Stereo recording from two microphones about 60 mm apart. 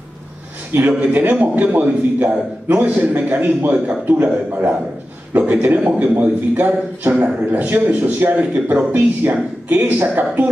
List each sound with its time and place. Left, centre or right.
0.7 s a man's voice: right